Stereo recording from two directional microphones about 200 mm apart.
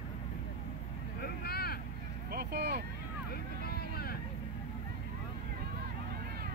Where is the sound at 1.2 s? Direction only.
50° left (ahead or behind).